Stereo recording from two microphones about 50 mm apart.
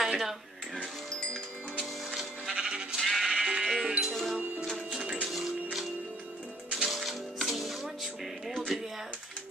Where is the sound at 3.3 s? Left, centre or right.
Centre.